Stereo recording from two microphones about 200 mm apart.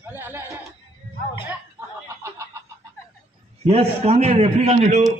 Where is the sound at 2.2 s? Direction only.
15° right (ahead or behind).